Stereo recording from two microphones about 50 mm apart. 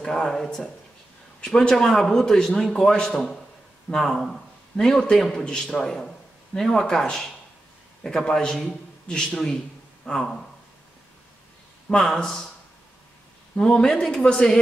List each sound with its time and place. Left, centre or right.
0.0 s a man's voice: centre
11.9 s a man's voice: centre
13.6 s a man's voice: centre